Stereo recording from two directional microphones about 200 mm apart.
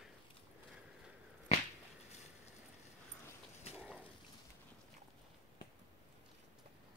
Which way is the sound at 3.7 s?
5° right (ahead or behind).